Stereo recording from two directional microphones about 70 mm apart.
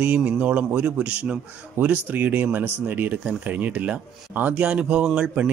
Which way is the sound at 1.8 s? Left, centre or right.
Right.